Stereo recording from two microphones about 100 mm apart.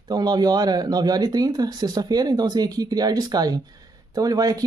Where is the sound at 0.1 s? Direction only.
40° right (ahead or behind).